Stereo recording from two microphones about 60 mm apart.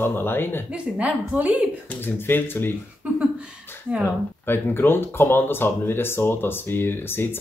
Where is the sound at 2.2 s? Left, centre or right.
Left.